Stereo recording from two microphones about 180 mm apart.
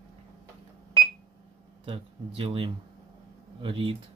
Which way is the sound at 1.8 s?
30° right (ahead or behind).